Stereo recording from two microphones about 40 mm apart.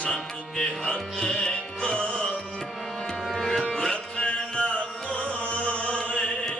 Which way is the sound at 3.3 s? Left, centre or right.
Centre.